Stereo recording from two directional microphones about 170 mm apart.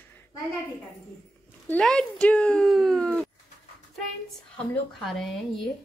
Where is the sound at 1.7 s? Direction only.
5° left (ahead or behind).